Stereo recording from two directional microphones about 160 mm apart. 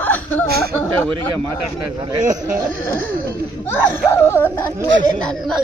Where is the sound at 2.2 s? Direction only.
50° right (ahead or behind).